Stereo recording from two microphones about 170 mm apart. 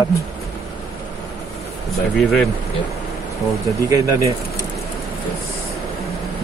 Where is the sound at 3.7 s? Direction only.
20° right (ahead or behind).